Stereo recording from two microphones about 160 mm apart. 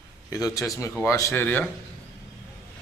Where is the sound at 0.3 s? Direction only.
20° left (ahead or behind).